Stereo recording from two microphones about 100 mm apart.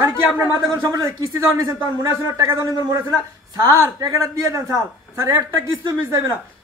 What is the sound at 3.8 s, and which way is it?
A man's voice, 30° right (ahead or behind).